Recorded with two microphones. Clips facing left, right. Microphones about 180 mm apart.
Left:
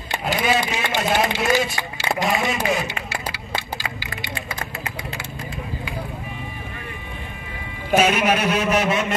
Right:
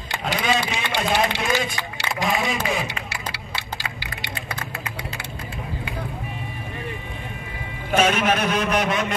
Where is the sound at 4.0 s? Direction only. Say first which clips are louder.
Left 2 dB; 70° right (ahead or behind).